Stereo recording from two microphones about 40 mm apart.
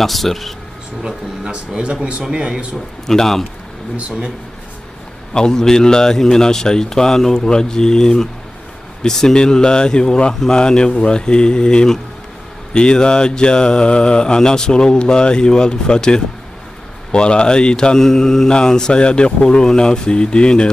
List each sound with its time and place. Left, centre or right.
0.0 s speech: centre
1.7 s speech: right
3.1 s a man's voice: centre
5.3 s a man's voice: centre
9.0 s mantra: centre
17.9 s a man's voice: centre
18.5 s mantra: centre